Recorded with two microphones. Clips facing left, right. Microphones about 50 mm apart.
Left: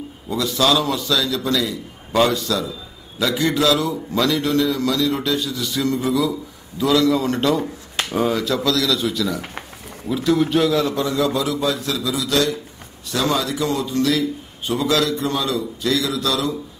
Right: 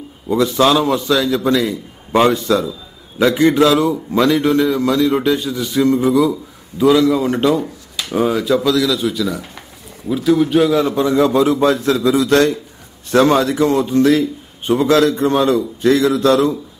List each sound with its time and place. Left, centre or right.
0.3 s a man's voice: right; by 10.8 s centre
10.8 s a man's voice: right
11.1 s a man's voice: right